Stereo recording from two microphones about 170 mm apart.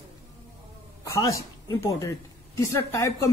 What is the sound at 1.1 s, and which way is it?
A man's voice, 20° left (ahead or behind).